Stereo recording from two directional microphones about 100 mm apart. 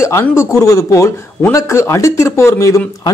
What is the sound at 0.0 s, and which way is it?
Speech, 25° left (ahead or behind).